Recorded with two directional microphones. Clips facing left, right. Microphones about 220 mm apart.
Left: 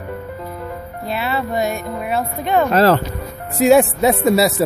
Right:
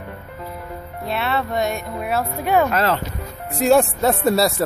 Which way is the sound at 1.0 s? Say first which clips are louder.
Left 1 dB; centre (ahead or behind).